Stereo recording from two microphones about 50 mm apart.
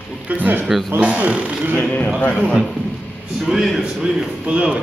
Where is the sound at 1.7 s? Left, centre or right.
Left.